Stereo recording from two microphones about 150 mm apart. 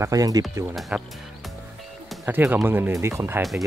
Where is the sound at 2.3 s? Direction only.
15° right (ahead or behind).